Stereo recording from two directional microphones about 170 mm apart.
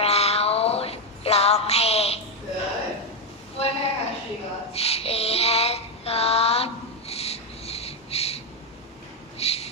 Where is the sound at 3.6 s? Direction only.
35° left (ahead or behind).